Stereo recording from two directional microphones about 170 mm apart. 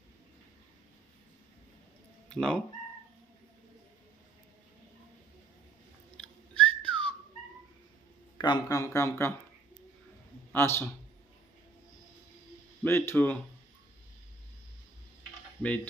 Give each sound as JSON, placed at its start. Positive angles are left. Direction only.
{"t": 2.2, "sound": "speech", "side_deg": 5}
{"t": 6.1, "sound": "whistling", "side_deg": 5}
{"t": 8.4, "sound": "speech", "side_deg": 25}
{"t": 10.5, "sound": "a man's voice", "side_deg": 15}
{"t": 12.8, "sound": "speech", "side_deg": 15}
{"t": 15.6, "sound": "speech", "side_deg": 10}